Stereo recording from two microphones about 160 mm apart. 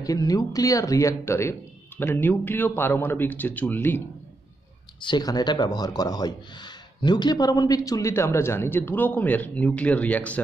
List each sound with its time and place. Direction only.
0.0 s speech: 20° left (ahead or behind)
5.0 s speech: 25° left (ahead or behind); by 10.4 s 10° left (ahead or behind)